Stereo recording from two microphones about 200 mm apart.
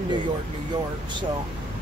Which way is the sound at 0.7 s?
20° right (ahead or behind).